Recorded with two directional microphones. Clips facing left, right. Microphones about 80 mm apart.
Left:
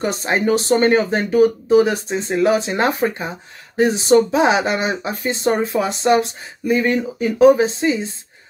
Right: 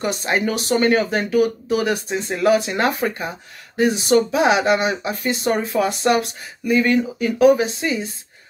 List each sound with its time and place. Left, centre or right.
0.0 s speech: left